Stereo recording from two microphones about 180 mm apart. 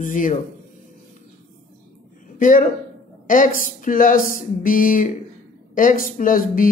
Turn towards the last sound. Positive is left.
turn(degrees=50)  # may be behind; listen again after turning